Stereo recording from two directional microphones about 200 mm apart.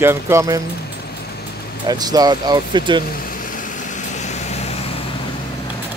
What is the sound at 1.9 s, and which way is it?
Speech, 20° right (ahead or behind).